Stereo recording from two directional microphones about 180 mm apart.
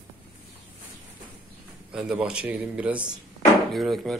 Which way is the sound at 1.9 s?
5° right (ahead or behind).